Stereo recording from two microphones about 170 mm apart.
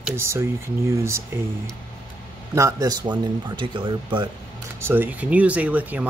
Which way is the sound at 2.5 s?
20° right (ahead or behind).